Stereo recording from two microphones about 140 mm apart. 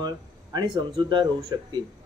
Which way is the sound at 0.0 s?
30° right (ahead or behind).